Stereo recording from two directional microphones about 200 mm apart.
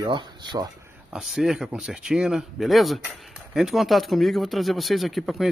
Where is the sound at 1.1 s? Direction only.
Centre (ahead or behind).